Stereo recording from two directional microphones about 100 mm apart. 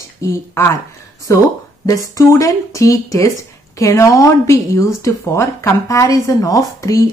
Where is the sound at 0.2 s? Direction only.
30° left (ahead or behind).